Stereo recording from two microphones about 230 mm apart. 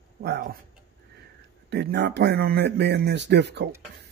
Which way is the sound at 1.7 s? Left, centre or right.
Right.